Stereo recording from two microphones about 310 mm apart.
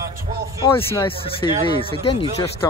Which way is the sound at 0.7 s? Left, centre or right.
Centre.